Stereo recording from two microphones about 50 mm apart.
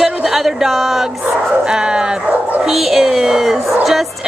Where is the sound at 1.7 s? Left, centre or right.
Centre.